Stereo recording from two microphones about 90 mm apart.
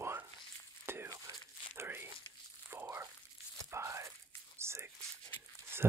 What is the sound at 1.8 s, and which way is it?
Tearing, 25° right (ahead or behind).